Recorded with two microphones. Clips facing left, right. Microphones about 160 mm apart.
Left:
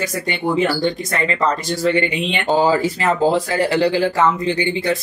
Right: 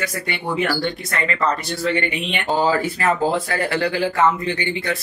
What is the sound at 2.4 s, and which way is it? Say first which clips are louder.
Speech: left 3 dB; 25° left (ahead or behind).